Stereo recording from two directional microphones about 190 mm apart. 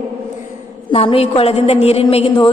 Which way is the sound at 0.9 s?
30° left (ahead or behind).